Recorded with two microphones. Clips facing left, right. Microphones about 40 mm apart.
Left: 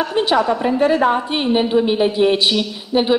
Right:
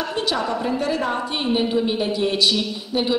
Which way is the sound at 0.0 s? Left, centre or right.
Left.